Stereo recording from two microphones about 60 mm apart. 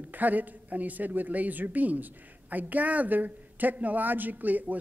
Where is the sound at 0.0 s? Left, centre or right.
Right.